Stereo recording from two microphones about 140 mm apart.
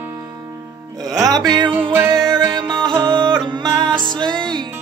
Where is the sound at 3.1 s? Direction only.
35° right (ahead or behind).